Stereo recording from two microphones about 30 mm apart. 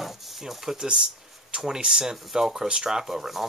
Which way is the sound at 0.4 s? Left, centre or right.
Centre.